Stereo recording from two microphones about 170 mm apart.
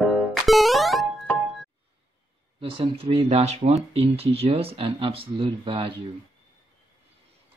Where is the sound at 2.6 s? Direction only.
30° right (ahead or behind).